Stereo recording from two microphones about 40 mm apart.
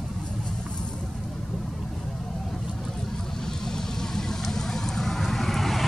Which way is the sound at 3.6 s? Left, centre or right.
Centre.